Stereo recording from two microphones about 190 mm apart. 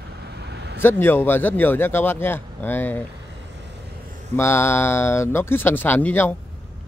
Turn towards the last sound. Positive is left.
turn(degrees=10)  # may be behind; listen again after turning